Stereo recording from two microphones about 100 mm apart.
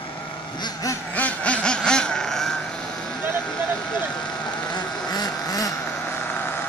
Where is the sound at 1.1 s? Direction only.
15° left (ahead or behind).